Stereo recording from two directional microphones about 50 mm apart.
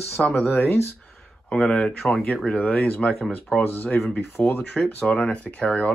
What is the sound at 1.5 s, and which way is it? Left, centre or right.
Speech, centre.